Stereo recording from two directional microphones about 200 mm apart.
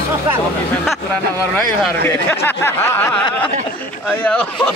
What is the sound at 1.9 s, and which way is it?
Speech, 10° left (ahead or behind).